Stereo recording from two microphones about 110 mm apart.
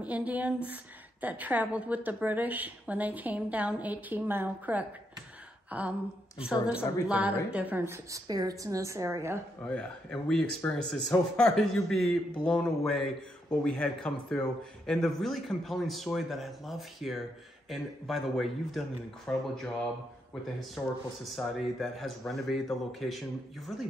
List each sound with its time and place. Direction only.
0.0 s a woman's voice: 15° right (ahead or behind)
8.3 s a woman's voice: 35° right (ahead or behind)
9.7 s a man's voice: 10° left (ahead or behind)
20.7 s a man's voice: centre (ahead or behind)